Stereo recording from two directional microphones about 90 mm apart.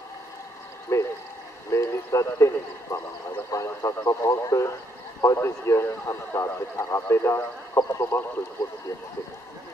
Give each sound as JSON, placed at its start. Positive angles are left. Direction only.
{"t": 0.9, "sound": "a sound", "side_deg": 35}
{"t": 3.5, "sound": "radio", "side_deg": 35}
{"t": 5.2, "sound": "a man's voice", "side_deg": 35}